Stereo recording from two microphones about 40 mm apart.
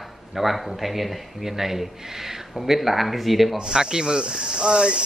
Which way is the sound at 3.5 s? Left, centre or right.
Centre.